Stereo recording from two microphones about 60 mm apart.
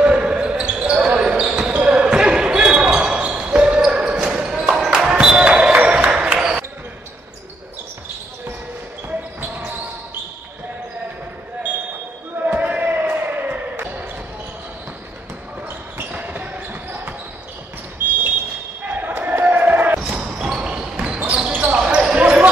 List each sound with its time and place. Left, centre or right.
0.0 s basketball bounce: centre
12.4 s a sound: right
13.1 s basketball bounce: right
16.0 s basketball bounce: right
18.0 s smoke detector: right
18.9 s basketball bounce: right
20.1 s basketball bounce: centre